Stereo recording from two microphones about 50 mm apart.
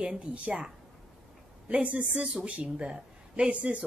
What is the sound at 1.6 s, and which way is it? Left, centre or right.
Speech, right.